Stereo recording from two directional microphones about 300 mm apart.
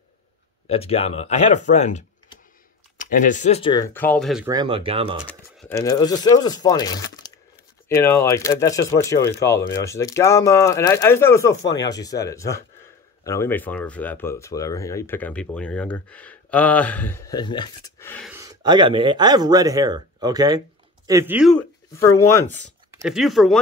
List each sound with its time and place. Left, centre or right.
0.7 s speech: centre
4.5 s speech: centre
5.6 s speech: centre
18.3 s speech: centre
22.9 s speech: centre